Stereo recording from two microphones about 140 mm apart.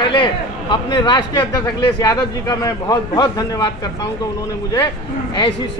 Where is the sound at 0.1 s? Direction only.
35° left (ahead or behind).